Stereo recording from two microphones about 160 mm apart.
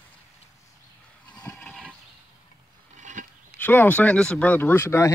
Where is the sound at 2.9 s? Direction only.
50° right (ahead or behind).